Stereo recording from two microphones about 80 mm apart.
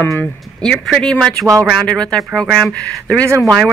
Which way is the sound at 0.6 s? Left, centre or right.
Centre.